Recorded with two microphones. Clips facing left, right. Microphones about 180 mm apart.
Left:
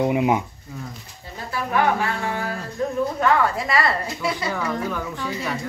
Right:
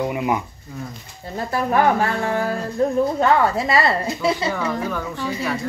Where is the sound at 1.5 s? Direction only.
45° right (ahead or behind).